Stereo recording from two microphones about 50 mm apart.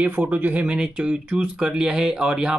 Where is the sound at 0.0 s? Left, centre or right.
Right.